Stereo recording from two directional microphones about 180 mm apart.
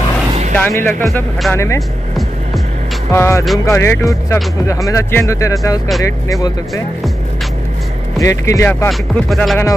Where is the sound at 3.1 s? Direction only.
15° left (ahead or behind).